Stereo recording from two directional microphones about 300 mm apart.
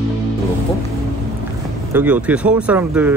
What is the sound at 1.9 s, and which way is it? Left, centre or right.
Speech, centre.